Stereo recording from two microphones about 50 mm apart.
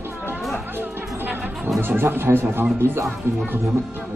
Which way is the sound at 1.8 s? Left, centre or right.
Right.